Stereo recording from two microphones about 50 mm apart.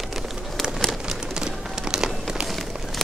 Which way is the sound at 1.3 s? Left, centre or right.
Centre.